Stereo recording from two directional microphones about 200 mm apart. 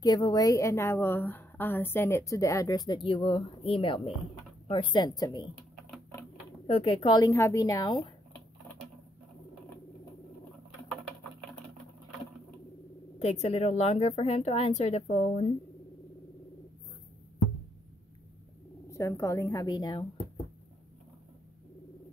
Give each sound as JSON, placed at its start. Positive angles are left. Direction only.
{"t": 0.0, "sound": "a woman's voice", "side_deg": 20}
{"t": 6.7, "sound": "a woman's voice", "side_deg": 30}
{"t": 13.2, "sound": "a woman's voice", "side_deg": 30}
{"t": 18.9, "sound": "a woman's voice", "side_deg": 15}